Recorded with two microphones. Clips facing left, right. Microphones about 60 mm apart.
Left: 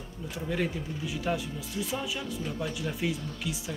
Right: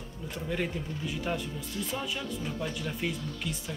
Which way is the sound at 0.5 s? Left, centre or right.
Centre.